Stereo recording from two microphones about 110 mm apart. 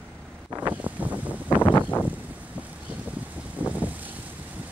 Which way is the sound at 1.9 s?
35° left (ahead or behind).